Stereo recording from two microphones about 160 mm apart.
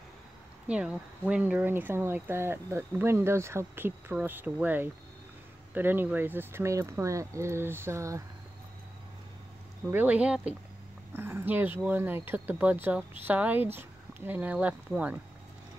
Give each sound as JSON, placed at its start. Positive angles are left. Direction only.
{"t": 0.7, "sound": "speech", "side_deg": -5}
{"t": 9.8, "sound": "speech", "side_deg": -10}